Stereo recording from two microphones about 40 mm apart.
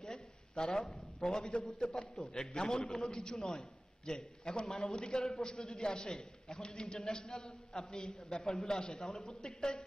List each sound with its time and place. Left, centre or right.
0.0 s a sound: centre
1.2 s a man's voice: left
7.4 s a woman's voice: centre
7.9 s a man's voice: left
8.9 s a woman's voice: centre